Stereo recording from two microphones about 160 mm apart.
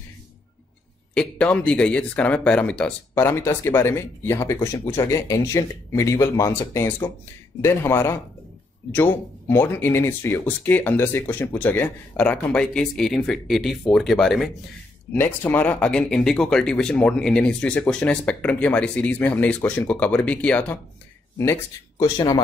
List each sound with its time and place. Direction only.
1.1 s speech: 5° left (ahead or behind)
4.6 s speech: 30° left (ahead or behind)
4.9 s speech: 20° left (ahead or behind); by 14.5 s centre (ahead or behind)
15.1 s speech: 15° left (ahead or behind)